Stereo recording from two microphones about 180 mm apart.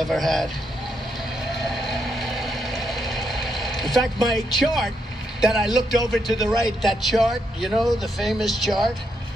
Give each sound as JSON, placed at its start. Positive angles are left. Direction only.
{"t": 0.0, "sound": "speech", "side_deg": 0}
{"t": 1.5, "sound": "a sound", "side_deg": 0}
{"t": 5.4, "sound": "speech", "side_deg": -5}
{"t": 6.3, "sound": "a man's voice", "side_deg": 20}
{"t": 6.8, "sound": "speech", "side_deg": 0}